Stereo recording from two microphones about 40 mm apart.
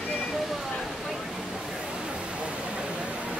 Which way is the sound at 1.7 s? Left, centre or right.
Centre.